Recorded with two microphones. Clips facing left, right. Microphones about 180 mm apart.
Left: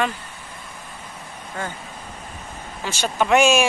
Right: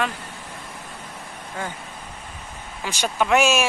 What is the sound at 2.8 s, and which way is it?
Speech, 10° right (ahead or behind).